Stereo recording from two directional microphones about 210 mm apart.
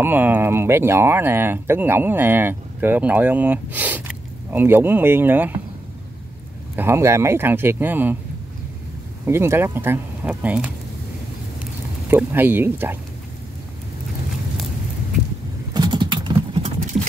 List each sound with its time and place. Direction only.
0.0 s speech: 10° right (ahead or behind)
6.7 s speech: 10° right (ahead or behind)
9.2 s speech: 10° right (ahead or behind)
11.6 s a sound: 10° right (ahead or behind)
15.7 s clip-clop: 20° right (ahead or behind)